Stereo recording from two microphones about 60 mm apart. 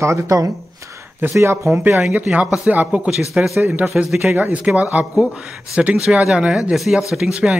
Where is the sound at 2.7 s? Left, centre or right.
Right.